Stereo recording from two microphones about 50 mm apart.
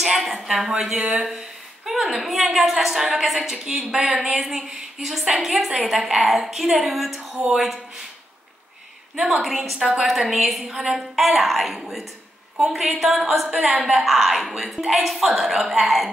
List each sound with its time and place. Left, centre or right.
0.0 s a woman's voice: centre
0.7 s a woman's voice: centre
9.2 s a woman's voice: centre